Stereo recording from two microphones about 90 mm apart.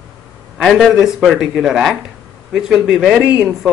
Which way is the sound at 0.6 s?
Centre (ahead or behind).